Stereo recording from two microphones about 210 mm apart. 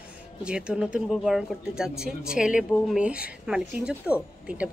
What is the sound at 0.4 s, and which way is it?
Speech, 5° right (ahead or behind).